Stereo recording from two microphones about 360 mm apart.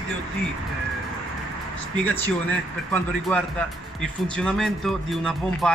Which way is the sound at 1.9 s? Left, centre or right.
Centre.